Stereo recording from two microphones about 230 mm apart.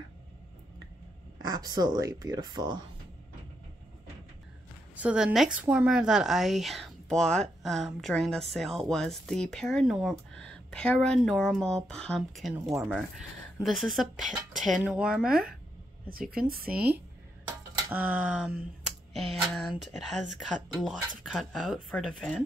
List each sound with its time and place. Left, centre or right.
1.4 s speech: centre
4.9 s speech: centre
16.1 s speech: right
17.5 s dishes: centre
19.1 s speech: centre
20.8 s speech: centre